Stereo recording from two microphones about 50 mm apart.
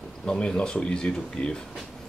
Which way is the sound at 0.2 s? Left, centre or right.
Centre.